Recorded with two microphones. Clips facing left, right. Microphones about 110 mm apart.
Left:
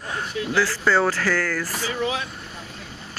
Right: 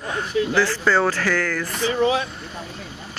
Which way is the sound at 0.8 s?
5° left (ahead or behind).